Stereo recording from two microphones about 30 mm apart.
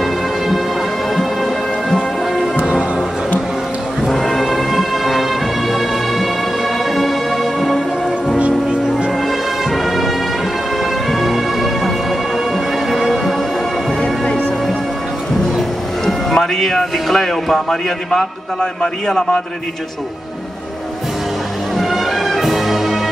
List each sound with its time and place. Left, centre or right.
1.1 s music: centre
2.5 s music: right
4.4 s music: centre
9.7 s music: centre
12.9 s music: centre
16.3 s music: centre
18.1 s a man's voice: left
21.7 s music: centre